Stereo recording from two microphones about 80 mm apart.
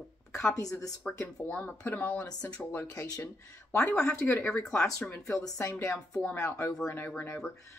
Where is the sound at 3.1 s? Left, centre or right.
Left.